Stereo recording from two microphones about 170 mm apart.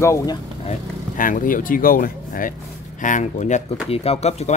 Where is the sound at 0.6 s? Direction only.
50° left (ahead or behind).